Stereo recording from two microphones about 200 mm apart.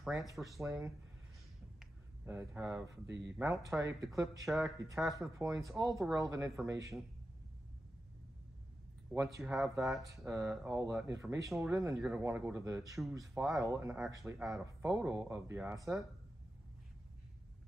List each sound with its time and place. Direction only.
0.0 s speech: centre (ahead or behind)
0.6 s speech: 15° right (ahead or behind)
1.8 s a sound: 10° right (ahead or behind)
3.3 s speech: 15° right (ahead or behind)
4.5 s speech: centre (ahead or behind)
4.7 s speech: 15° right (ahead or behind)
9.1 s speech: 10° right (ahead or behind)
9.4 s speech: centre (ahead or behind)
10.0 s speech: 15° right (ahead or behind)
10.4 s speech: 5° right (ahead or behind)
14.4 s speech: centre (ahead or behind)
14.9 s speech: 10° right (ahead or behind)